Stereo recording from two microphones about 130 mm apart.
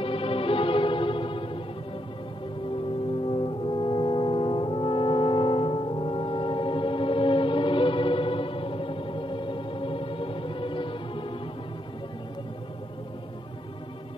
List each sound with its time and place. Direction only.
0.0 s music: 45° left (ahead or behind)
3.3 s brass instrument: 40° left (ahead or behind)